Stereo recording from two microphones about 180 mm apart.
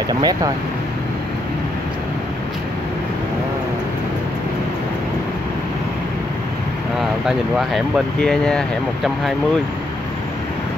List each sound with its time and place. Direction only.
0.2 s speech: 20° right (ahead or behind)
7.0 s speech: centre (ahead or behind)